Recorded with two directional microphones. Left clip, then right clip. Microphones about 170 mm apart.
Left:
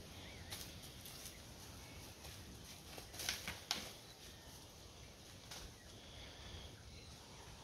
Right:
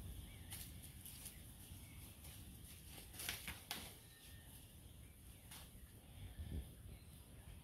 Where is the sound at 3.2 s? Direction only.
25° left (ahead or behind).